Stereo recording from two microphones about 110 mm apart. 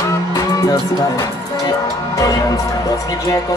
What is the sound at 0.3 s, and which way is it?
Music, 30° left (ahead or behind).